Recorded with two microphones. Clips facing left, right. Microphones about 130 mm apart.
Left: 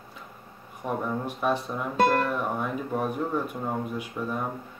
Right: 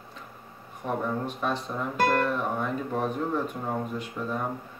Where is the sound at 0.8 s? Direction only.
10° left (ahead or behind).